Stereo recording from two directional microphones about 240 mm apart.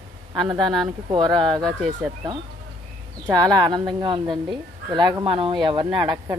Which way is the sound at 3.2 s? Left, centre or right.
Centre.